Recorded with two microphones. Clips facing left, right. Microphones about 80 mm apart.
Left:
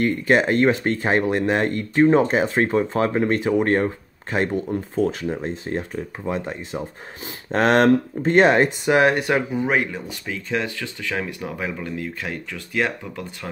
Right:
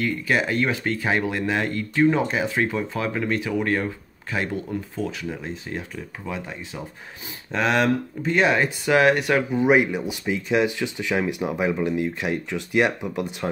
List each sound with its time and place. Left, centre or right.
0.0 s speech: left
8.8 s speech: left
9.6 s speech: centre